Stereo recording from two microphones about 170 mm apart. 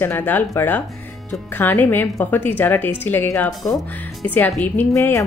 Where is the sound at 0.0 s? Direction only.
10° left (ahead or behind).